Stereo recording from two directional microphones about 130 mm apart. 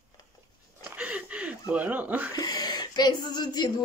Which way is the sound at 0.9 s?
10° right (ahead or behind).